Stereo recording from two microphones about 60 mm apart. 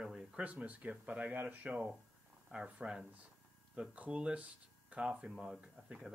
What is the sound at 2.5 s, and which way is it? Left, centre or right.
Speech, centre.